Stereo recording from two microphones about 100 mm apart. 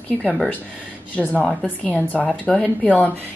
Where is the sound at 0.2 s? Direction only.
10° left (ahead or behind).